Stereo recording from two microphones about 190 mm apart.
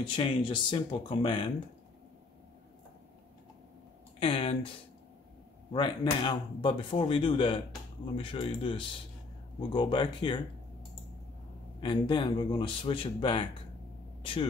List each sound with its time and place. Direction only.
0.0 s speech: 25° left (ahead or behind)
4.2 s speech: 30° left (ahead or behind)
11.8 s speech: 25° left (ahead or behind)